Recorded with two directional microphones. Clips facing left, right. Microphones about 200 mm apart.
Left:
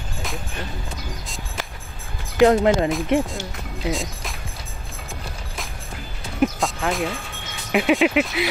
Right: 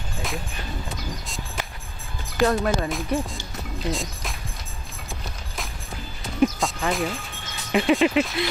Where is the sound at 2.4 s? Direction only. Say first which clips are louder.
Left 6 dB; 20° left (ahead or behind).